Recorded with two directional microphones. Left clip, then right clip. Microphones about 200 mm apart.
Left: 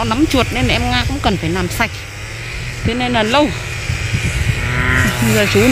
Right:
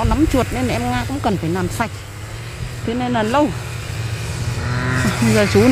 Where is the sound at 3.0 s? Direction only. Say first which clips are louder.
Left 3 dB; centre (ahead or behind).